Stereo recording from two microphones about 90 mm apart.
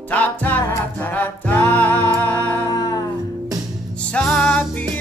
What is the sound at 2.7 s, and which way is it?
Music, 45° left (ahead or behind).